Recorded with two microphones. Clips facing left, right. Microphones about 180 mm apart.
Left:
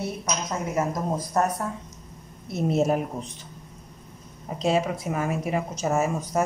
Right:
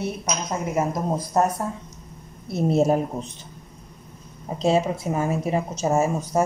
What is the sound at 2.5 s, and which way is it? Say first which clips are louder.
Speech: right 3 dB; 30° right (ahead or behind).